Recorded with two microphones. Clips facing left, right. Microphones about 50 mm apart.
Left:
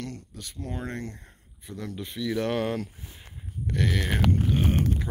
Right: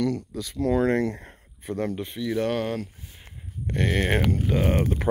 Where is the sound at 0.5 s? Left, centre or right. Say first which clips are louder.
Right 13 dB; right.